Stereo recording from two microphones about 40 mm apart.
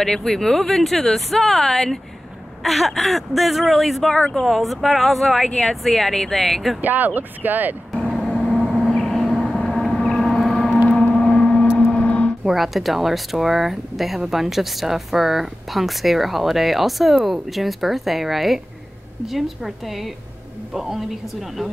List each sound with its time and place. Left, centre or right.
0.0 s speech: centre
6.8 s speech: right
8.2 s vehicle: centre
9.9 s a sound: centre
10.9 s gong: left
11.2 s gong: centre
12.0 s a sound: left
12.4 s a woman's voice: centre